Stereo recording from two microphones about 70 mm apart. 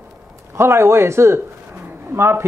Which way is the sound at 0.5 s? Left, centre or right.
Right.